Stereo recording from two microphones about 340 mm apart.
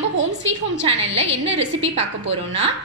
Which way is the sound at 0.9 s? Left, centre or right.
Right.